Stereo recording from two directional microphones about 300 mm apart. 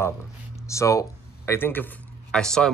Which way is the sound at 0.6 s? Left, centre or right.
Centre.